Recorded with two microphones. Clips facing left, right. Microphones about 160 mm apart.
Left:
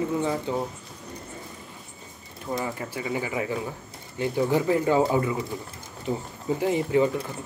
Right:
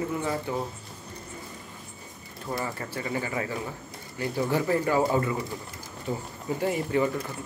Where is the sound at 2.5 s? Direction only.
15° left (ahead or behind).